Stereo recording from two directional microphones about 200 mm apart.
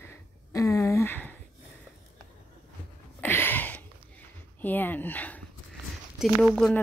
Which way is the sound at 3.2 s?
10° left (ahead or behind).